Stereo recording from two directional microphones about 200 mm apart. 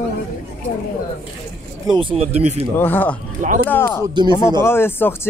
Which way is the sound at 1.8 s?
25° right (ahead or behind).